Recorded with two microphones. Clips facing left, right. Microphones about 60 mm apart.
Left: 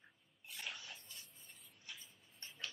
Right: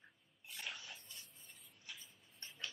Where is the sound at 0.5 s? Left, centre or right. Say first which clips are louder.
Even; centre.